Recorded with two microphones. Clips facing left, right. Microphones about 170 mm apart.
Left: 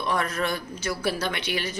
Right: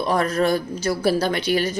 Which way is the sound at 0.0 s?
35° right (ahead or behind).